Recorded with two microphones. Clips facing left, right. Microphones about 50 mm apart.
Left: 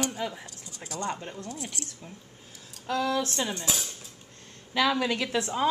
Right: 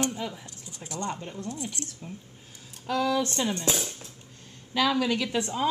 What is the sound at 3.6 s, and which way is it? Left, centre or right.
Speech, right.